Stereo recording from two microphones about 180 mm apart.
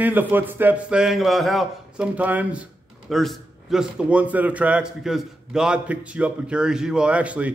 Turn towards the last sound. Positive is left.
turn(degrees=-5)  # may be behind; listen again after turning